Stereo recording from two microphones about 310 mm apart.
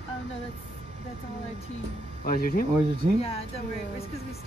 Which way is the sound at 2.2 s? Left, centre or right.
Left.